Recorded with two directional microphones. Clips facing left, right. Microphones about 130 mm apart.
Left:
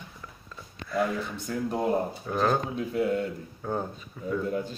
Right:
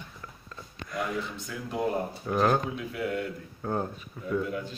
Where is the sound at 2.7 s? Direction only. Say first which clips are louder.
Left 5 dB; 35° left (ahead or behind).